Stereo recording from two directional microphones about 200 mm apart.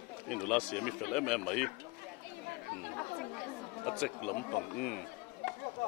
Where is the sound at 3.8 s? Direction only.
5° left (ahead or behind).